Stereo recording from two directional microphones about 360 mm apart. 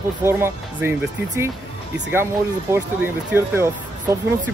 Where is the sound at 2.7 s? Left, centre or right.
Centre.